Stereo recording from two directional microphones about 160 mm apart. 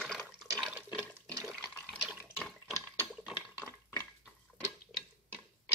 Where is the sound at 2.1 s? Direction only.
5° right (ahead or behind).